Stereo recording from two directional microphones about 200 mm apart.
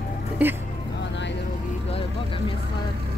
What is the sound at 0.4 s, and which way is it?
Speech, 10° right (ahead or behind).